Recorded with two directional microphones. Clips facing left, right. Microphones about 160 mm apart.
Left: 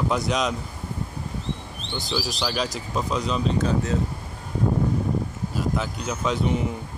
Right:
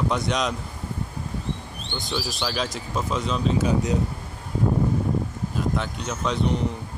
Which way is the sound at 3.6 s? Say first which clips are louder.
Right 1 dB; 15° right (ahead or behind).